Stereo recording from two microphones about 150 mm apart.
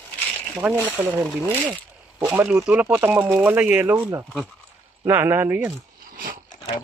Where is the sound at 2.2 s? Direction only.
10° right (ahead or behind).